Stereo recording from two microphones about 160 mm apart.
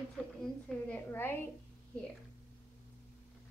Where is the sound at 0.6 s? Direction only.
10° left (ahead or behind).